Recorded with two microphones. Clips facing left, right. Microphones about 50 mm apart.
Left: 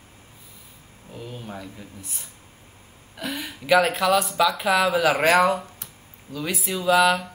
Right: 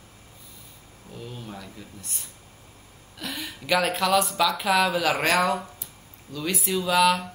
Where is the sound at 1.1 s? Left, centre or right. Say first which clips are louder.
Left 2 dB; centre.